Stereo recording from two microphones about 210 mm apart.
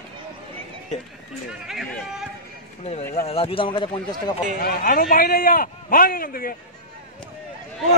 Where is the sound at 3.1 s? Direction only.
30° left (ahead or behind).